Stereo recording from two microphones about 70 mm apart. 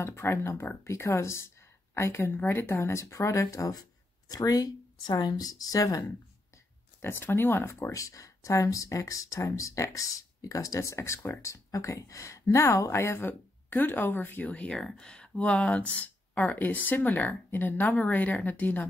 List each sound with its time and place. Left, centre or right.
0.0 s speech: left
7.0 s speech: left
7.9 s speech: left
13.3 s speech: left
14.8 s speech: centre; by 18.9 s left